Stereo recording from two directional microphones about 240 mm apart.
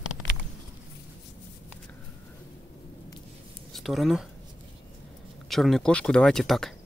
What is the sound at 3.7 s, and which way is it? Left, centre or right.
Speech, centre.